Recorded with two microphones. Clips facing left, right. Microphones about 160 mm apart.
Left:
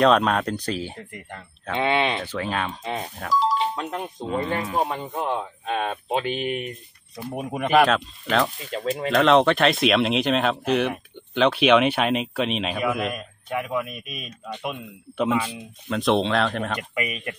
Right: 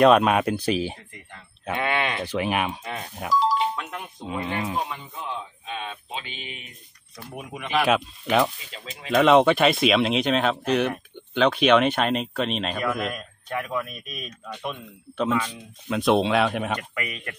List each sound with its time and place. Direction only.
0.0 s speech: 5° right (ahead or behind)
1.8 s speech: 25° left (ahead or behind)
2.2 s speech: 15° right (ahead or behind)
2.8 s speech: 25° left (ahead or behind)
3.3 s music: centre (ahead or behind)
3.7 s speech: 35° left (ahead or behind)
4.7 s speech: 45° left (ahead or behind)
7.9 s speech: 10° right (ahead or behind)
8.5 s speech: 50° left (ahead or behind)
9.1 s speech: 5° right (ahead or behind)
15.9 s speech: 5° right (ahead or behind)
16.9 s speech: 15° left (ahead or behind)